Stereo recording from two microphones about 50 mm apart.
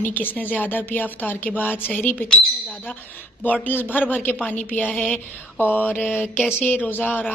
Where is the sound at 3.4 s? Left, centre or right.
Left.